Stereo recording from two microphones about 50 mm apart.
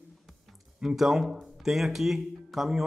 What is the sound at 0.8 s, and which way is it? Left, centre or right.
A man's voice, centre.